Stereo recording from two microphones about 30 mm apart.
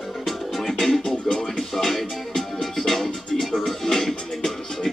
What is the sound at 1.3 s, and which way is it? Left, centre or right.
Music, left.